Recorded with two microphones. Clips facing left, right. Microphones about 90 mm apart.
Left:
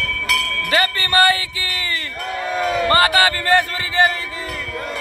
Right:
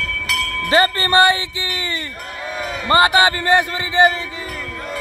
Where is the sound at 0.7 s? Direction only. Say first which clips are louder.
Right 4 dB; 30° right (ahead or behind).